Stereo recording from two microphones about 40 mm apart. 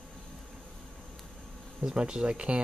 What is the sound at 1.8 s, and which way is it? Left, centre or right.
Speech, right.